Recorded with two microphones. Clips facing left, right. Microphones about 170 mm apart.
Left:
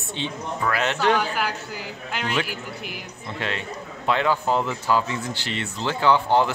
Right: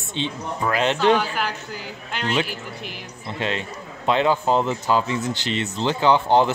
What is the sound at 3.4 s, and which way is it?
A man's voice, 20° right (ahead or behind).